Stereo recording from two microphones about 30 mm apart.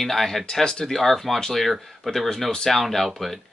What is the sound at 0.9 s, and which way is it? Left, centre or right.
Speech, centre.